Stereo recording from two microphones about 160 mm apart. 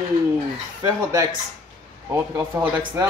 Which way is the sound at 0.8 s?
20° right (ahead or behind).